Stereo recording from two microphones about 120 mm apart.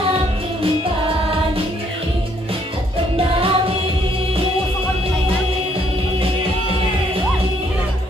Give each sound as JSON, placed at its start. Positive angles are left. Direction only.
{"t": 3.2, "sound": "music", "side_deg": -50}